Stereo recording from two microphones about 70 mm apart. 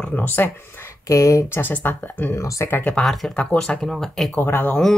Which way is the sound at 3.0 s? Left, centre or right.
Centre.